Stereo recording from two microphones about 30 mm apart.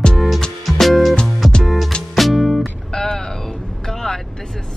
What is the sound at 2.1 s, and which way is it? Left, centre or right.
Music, centre.